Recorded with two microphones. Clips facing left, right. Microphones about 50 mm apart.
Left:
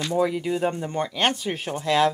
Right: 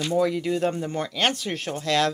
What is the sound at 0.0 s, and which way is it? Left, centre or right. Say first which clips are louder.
Speech: even; centre.